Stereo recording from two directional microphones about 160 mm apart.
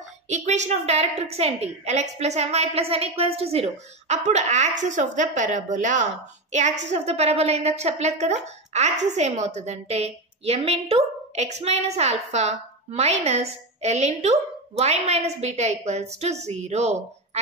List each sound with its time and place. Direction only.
0.3 s a woman's voice: 45° right (ahead or behind)